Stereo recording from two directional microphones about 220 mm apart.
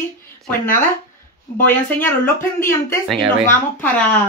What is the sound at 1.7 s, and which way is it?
Speech, 10° left (ahead or behind).